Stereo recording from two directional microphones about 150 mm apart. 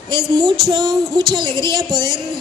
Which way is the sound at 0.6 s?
30° right (ahead or behind).